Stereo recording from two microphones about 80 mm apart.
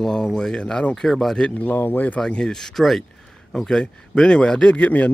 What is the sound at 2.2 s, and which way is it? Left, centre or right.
Speech, centre.